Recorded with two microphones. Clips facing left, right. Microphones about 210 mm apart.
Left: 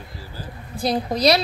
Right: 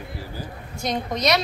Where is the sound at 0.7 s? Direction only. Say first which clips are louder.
Left 4 dB; 35° left (ahead or behind).